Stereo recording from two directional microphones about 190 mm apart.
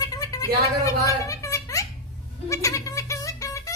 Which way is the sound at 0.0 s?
20° left (ahead or behind).